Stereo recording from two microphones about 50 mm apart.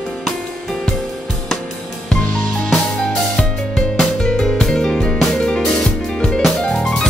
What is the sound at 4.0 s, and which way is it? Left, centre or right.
Music, centre.